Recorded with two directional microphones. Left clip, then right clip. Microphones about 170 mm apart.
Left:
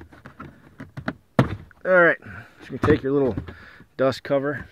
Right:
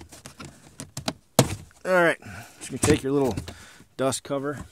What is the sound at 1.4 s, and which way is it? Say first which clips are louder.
Door: left 4 dB; 40° right (ahead or behind).